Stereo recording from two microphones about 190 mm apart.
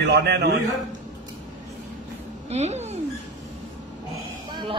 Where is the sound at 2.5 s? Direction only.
35° right (ahead or behind).